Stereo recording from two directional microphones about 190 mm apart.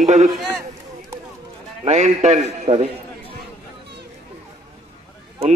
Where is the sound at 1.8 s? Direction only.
35° right (ahead or behind).